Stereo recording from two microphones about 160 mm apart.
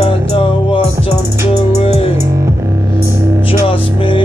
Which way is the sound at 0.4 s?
35° left (ahead or behind).